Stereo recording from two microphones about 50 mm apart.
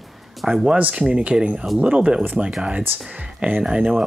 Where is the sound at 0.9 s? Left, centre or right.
Centre.